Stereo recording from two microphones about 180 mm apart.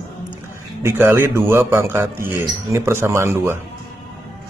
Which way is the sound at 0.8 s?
15° right (ahead or behind).